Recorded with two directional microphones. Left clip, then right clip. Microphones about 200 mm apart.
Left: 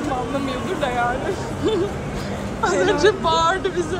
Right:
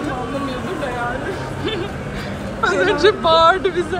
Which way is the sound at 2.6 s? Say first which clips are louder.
Right 2 dB; 15° left (ahead or behind).